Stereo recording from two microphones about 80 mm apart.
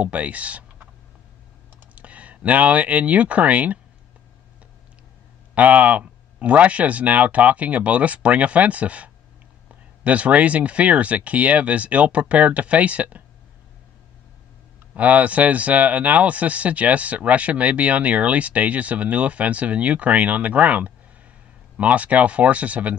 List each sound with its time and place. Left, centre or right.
0.0 s speech: centre
2.0 s speech: centre
5.5 s speech: centre
15.0 s speech: centre